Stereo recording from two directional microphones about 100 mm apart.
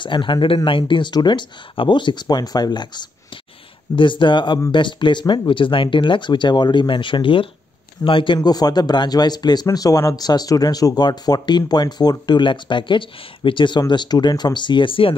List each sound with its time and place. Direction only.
0.0 s speech: 55° left (ahead or behind)
8.4 s speech: 40° left (ahead or behind); by 15.1 s 60° left (ahead or behind)